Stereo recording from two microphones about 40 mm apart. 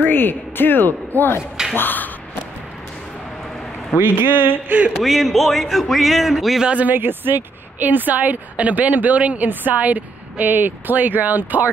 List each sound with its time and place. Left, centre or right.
0.0 s speech: left
4.0 s speech: right
4.6 s a woman's voice: right
4.9 s a man's voice: centre
6.9 s speech: right
7.8 s a woman's voice: right
9.5 s speech: right
9.8 s speech: right